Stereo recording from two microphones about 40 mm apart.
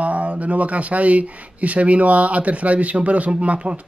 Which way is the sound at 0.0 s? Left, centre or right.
Right.